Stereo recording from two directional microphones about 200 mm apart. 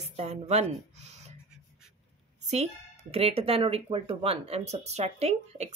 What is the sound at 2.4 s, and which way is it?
Speech, 35° right (ahead or behind).